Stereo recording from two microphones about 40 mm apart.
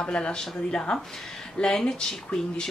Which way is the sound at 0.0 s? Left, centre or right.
Left.